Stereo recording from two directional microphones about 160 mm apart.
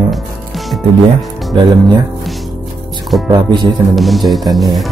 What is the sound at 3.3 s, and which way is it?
Speech, 25° right (ahead or behind).